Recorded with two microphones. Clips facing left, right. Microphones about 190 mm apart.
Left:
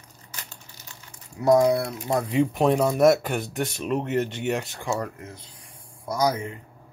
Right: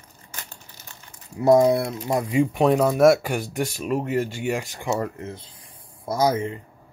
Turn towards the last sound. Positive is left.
turn(degrees=-30)  # may be behind; listen again after turning